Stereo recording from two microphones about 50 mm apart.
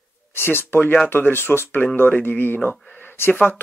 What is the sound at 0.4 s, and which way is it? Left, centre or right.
Speech, left.